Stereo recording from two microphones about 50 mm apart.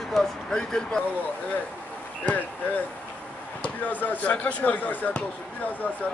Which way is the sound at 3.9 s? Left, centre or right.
Left.